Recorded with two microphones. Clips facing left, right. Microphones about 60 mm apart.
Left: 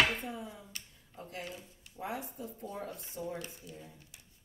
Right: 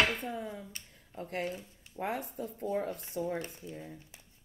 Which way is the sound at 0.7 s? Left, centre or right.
Right.